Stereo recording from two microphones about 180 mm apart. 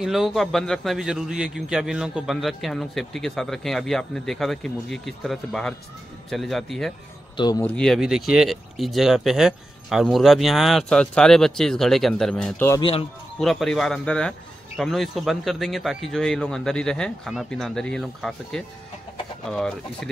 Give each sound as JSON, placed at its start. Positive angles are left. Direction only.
{"t": 0.0, "sound": "a man's voice", "side_deg": 0}
{"t": 7.3, "sound": "speech", "side_deg": 20}
{"t": 7.6, "sound": "a man's voice", "side_deg": 5}
{"t": 13.4, "sound": "a man's voice", "side_deg": 0}